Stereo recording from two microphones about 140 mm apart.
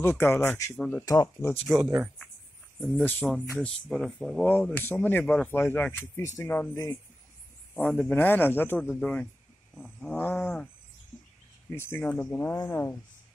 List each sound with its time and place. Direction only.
0.0 s speech: 15° left (ahead or behind)
1.0 s speech: 25° left (ahead or behind)
2.8 s speech: 5° left (ahead or behind)
4.5 s speech: 10° left (ahead or behind)
7.7 s speech: 5° left (ahead or behind)
11.7 s speech: 15° left (ahead or behind)